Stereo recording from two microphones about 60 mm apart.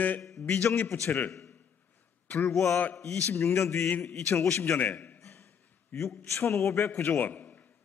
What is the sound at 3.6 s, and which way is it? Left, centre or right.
Speech, left.